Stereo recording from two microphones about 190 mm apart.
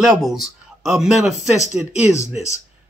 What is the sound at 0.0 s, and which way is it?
A man's voice, centre (ahead or behind).